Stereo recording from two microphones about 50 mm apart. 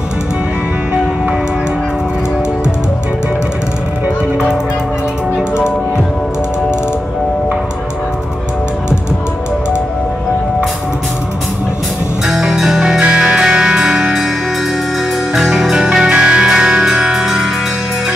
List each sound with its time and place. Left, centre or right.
12.3 s music: centre
15.4 s music: centre